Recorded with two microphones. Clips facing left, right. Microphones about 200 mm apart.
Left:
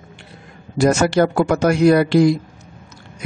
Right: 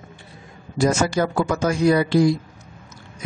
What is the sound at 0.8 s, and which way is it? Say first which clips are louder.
A man's voice: left 5 dB; 65° left (ahead or behind).